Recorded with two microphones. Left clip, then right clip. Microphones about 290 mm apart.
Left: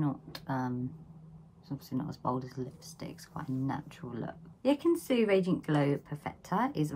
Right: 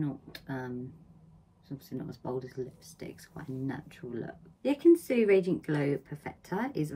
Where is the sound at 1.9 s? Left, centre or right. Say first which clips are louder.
Left 3 dB; left.